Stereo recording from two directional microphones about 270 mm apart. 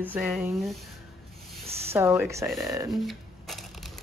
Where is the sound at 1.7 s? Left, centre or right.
Right.